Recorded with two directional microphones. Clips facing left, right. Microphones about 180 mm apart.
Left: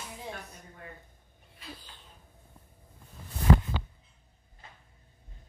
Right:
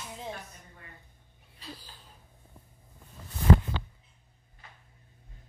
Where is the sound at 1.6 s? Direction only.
35° right (ahead or behind).